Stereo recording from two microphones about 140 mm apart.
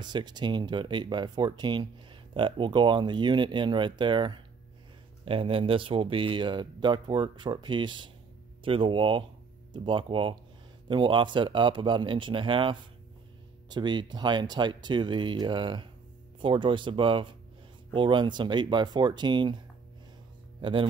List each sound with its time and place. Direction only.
0.0 s speech: 30° right (ahead or behind)
20.6 s speech: 35° right (ahead or behind)